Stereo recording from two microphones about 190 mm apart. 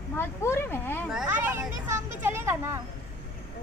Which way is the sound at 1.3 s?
10° right (ahead or behind).